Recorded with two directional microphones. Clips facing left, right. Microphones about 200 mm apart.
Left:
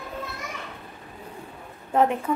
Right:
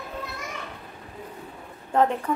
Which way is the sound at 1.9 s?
10° left (ahead or behind).